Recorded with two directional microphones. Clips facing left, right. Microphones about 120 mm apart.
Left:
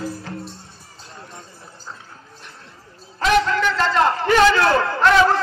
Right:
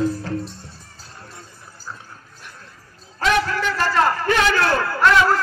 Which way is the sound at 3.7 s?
25° left (ahead or behind).